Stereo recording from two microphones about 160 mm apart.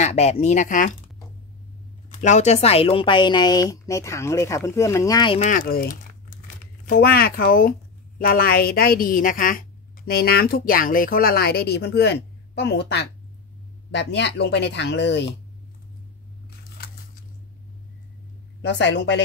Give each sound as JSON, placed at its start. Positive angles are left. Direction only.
{"t": 0.0, "sound": "speech", "side_deg": 40}
{"t": 2.0, "sound": "speech", "side_deg": 50}
{"t": 5.3, "sound": "a woman's voice", "side_deg": 50}
{"t": 18.6, "sound": "speech", "side_deg": 90}